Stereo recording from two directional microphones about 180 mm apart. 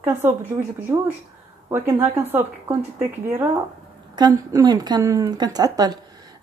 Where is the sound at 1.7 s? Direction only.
15° right (ahead or behind).